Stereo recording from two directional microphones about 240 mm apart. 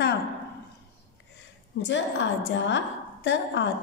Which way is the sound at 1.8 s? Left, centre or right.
Left.